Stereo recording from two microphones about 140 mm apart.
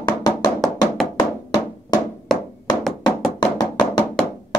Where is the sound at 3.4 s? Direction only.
35° left (ahead or behind).